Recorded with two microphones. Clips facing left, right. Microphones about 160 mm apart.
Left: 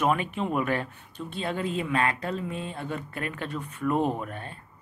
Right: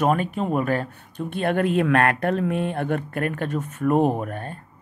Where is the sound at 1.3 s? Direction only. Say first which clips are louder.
Right 9 dB; 65° right (ahead or behind).